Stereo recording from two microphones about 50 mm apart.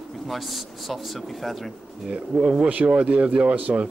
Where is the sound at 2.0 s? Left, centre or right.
Centre.